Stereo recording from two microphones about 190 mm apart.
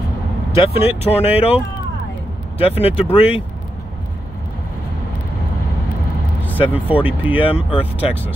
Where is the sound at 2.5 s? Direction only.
30° left (ahead or behind).